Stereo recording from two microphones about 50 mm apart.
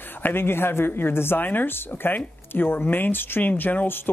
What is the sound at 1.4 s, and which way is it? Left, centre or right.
Speech, left.